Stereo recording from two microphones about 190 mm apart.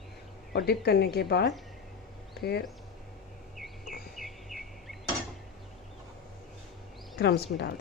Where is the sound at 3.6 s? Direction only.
Centre (ahead or behind).